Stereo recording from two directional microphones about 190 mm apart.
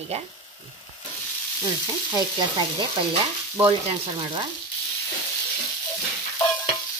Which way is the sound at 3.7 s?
25° right (ahead or behind).